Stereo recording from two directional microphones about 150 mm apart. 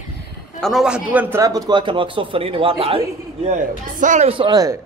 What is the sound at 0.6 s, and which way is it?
A man's voice, centre (ahead or behind).